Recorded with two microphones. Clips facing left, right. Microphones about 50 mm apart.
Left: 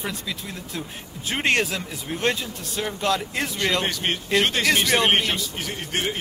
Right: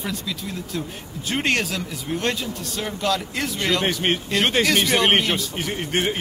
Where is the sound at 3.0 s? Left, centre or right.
Centre.